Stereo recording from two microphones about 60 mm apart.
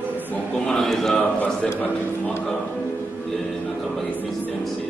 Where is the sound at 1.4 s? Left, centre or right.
Left.